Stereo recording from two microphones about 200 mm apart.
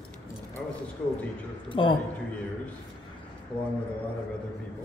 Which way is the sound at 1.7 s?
25° left (ahead or behind).